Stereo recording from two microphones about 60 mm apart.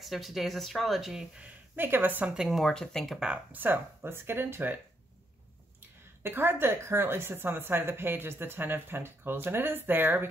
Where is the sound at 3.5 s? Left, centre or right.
Right.